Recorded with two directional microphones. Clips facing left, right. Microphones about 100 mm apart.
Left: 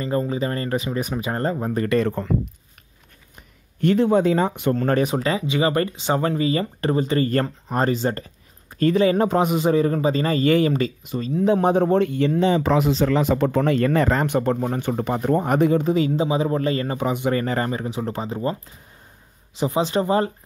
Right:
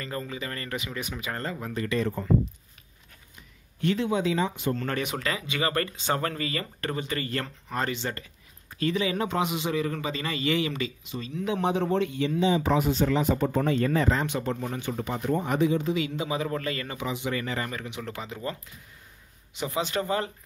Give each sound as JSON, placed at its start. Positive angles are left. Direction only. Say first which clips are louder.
{"t": 0.0, "sound": "speech", "louder": "left 11 dB", "side_deg": 30}
{"t": 2.0, "sound": "speech", "louder": "left 3 dB", "side_deg": 70}
{"t": 3.8, "sound": "a man's voice", "louder": "left 8 dB", "side_deg": 50}
{"t": 4.8, "sound": "a man's voice", "louder": "left 9 dB", "side_deg": 35}
{"t": 16.3, "sound": "speech", "louder": "left 8 dB", "side_deg": 25}
{"t": 17.1, "sound": "a man's voice", "louder": "left 7 dB", "side_deg": 45}
{"t": 19.6, "sound": "speech", "louder": "left 8 dB", "side_deg": 30}